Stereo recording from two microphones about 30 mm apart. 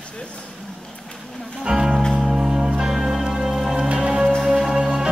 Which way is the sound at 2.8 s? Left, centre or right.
Centre.